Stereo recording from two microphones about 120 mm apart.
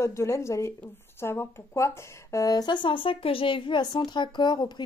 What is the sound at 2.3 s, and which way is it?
Speech, 30° left (ahead or behind).